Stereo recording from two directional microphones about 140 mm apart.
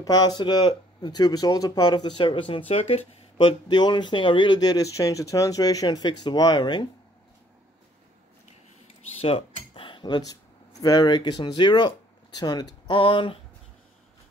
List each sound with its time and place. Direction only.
0.0 s speech: 30° left (ahead or behind)
3.6 s speech: 30° left (ahead or behind)
9.2 s speech: 40° left (ahead or behind)